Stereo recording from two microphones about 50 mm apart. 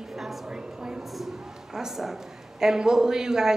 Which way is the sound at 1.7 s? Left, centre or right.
Centre.